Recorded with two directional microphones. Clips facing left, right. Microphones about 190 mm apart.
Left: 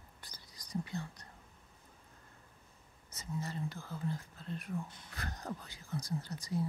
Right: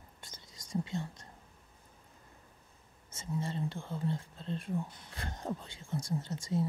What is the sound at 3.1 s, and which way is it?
Speech, 25° right (ahead or behind).